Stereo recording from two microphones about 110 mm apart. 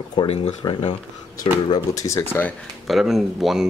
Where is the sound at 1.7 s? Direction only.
30° left (ahead or behind).